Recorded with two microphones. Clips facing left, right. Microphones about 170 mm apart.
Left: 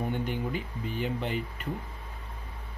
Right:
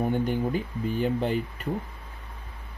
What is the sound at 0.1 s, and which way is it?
Speech, 40° right (ahead or behind).